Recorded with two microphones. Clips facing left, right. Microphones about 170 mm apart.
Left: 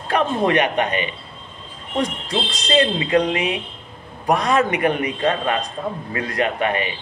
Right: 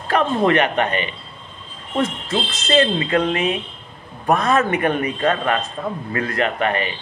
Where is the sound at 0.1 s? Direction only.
15° left (ahead or behind).